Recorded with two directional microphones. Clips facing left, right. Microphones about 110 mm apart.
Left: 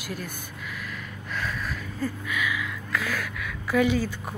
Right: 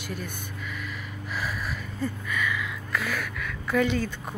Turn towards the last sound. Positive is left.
turn(degrees=5)  # may be behind; listen again after turning